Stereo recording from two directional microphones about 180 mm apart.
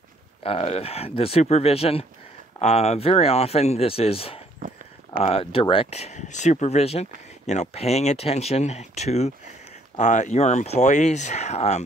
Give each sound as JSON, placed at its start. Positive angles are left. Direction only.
{"t": 0.4, "sound": "speech", "side_deg": 30}
{"t": 4.6, "sound": "a sound", "side_deg": -50}
{"t": 5.2, "sound": "speech", "side_deg": 35}